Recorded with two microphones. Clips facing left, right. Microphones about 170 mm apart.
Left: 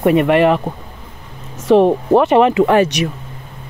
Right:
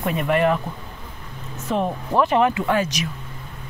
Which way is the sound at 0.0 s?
70° left (ahead or behind).